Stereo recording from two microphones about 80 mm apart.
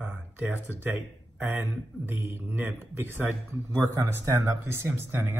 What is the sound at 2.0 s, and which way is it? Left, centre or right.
A man's voice, right.